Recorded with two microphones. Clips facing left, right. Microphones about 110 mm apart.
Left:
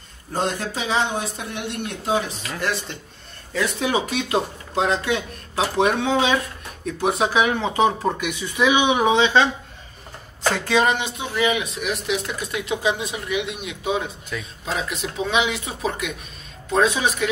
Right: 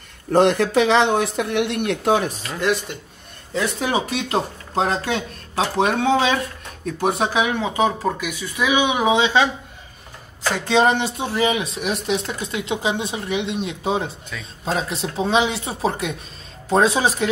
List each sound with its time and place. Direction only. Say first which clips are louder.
0.3 s speech: right 9 dB; 70° right (ahead or behind); by 2.4 s 50° right (ahead or behind)
2.5 s a man's voice: right 4 dB; 15° right (ahead or behind)
3.5 s speech: right 1 dB; 30° right (ahead or behind)
7.4 s speech: left 1 dB; 5° right (ahead or behind)
10.5 s speech: right 3 dB; 20° right (ahead or behind)